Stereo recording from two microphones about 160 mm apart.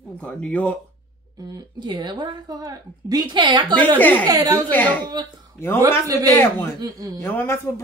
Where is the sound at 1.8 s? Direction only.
25° right (ahead or behind).